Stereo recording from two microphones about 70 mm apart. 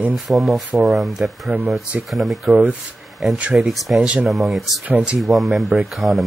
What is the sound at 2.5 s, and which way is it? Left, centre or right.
Speech, right.